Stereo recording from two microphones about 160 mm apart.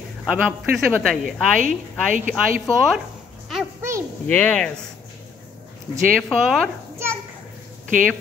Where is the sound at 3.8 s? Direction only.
15° right (ahead or behind).